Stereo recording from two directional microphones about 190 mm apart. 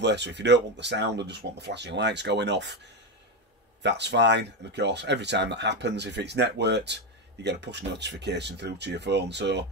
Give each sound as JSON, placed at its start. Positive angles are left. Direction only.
{"t": 0.0, "sound": "speech", "side_deg": -65}